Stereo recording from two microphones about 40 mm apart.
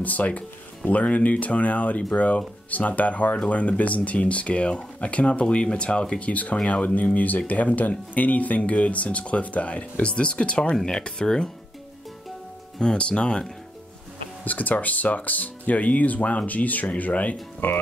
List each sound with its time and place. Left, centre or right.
0.0 s speech: left
10.8 s speech: centre
12.9 s speech: left
14.4 s speech: left